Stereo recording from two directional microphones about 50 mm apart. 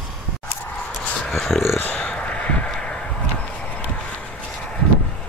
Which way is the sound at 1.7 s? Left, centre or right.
Left.